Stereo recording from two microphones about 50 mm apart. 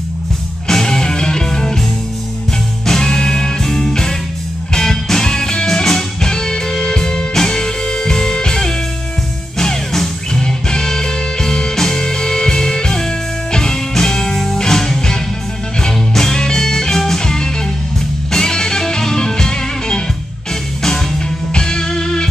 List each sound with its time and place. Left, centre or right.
0.7 s music: centre
2.9 s music: centre
21.5 s music: centre